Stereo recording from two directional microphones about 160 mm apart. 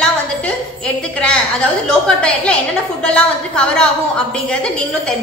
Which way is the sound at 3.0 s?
5° left (ahead or behind).